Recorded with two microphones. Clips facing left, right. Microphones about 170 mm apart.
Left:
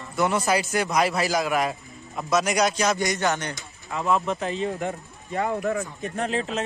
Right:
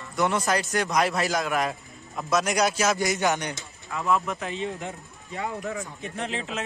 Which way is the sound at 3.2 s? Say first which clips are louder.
Even; 15° right (ahead or behind).